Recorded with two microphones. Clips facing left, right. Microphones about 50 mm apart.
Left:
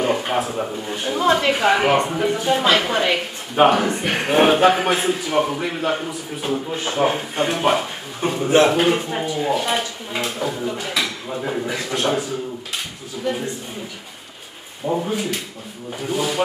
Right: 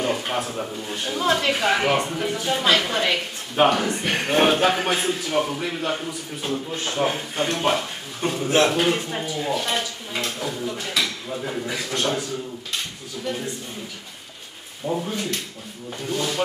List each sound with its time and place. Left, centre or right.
0.0 s a sound: centre
0.7 s speech: centre
14.9 s speech: centre